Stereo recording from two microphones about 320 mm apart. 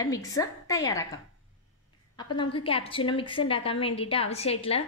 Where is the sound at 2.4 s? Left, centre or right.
Centre.